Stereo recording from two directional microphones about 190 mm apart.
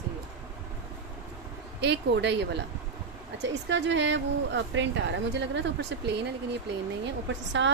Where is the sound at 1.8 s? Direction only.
65° right (ahead or behind).